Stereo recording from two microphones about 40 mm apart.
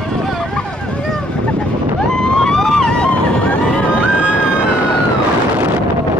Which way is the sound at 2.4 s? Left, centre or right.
Centre.